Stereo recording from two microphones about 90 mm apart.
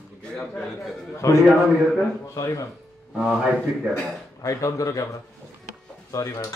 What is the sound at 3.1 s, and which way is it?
Speech, 10° right (ahead or behind).